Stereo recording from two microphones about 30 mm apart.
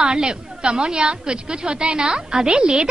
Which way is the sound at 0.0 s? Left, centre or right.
Right.